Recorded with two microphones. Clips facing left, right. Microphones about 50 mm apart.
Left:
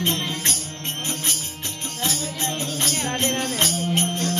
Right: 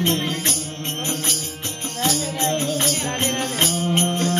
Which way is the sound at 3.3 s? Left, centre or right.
Centre.